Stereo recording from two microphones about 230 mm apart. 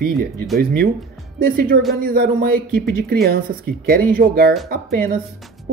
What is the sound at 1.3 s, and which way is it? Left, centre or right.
Speech, right.